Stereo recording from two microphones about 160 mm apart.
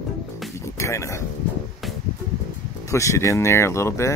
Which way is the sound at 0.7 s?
20° left (ahead or behind).